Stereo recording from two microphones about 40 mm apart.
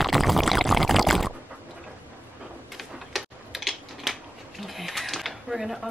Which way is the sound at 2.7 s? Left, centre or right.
Centre.